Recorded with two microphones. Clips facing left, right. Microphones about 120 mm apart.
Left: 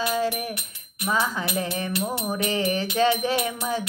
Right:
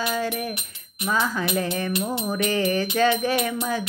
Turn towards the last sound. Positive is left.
turn(degrees=25)  # may be behind; listen again after turning